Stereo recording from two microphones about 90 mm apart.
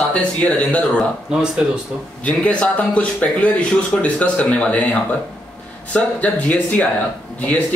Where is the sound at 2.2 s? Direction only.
15° left (ahead or behind).